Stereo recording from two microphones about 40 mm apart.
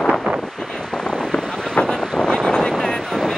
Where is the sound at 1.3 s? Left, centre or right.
Left.